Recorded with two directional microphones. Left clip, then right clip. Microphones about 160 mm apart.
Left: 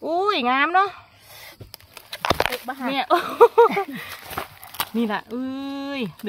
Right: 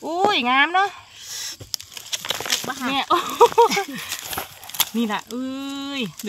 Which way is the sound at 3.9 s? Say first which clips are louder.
Right 3 dB; 25° left (ahead or behind).